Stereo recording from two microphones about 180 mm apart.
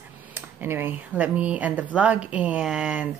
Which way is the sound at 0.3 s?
10° right (ahead or behind).